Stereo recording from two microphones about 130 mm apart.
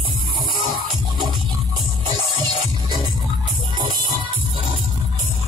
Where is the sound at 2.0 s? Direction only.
35° right (ahead or behind).